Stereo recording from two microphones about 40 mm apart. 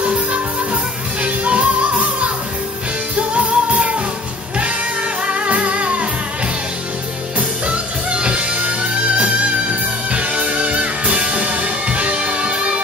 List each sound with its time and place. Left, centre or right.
0.0 s music: right
5.2 s music: right
7.3 s music: right